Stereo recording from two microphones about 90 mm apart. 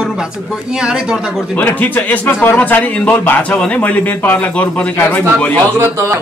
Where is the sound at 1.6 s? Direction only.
20° left (ahead or behind).